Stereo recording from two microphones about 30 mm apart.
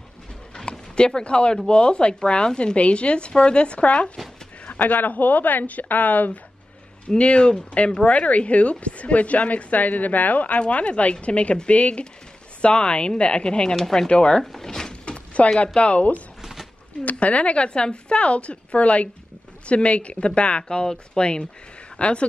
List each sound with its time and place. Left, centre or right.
0.7 s speech: left
4.7 s speech: left
7.2 s a woman's voice: left
10.7 s a woman's voice: left
13.7 s speech: centre
14.0 s speech: left
14.4 s speech: centre
14.9 s a sound: left
15.6 s a woman's voice: left